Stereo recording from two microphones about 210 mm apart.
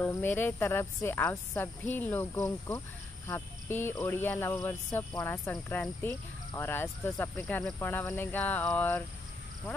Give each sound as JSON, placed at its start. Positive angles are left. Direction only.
{"t": 0.0, "sound": "speech", "side_deg": 10}